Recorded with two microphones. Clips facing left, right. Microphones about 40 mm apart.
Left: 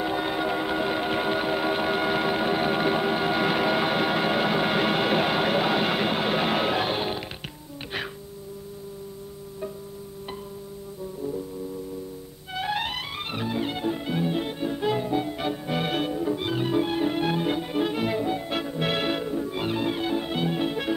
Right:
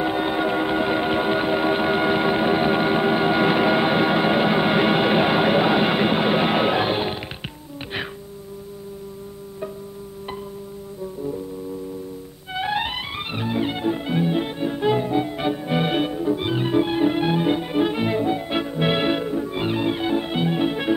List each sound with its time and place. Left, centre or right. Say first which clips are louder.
0.0 s music: right 4 dB; centre
12.5 s music: right 4 dB; centre